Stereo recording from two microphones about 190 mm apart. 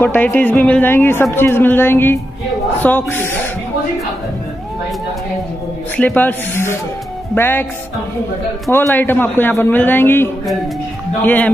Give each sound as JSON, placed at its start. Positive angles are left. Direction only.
{"t": 0.0, "sound": "speech", "side_deg": 10}
{"t": 5.9, "sound": "speech", "side_deg": 10}
{"t": 8.6, "sound": "speech", "side_deg": 15}